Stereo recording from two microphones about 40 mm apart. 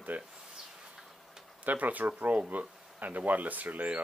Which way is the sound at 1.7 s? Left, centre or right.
Right.